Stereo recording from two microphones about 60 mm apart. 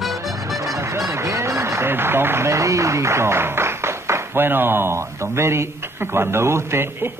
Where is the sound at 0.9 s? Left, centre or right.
Right.